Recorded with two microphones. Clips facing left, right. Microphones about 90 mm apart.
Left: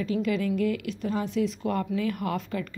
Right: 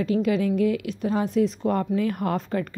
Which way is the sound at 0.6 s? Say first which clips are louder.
Right 4 dB; 50° left (ahead or behind).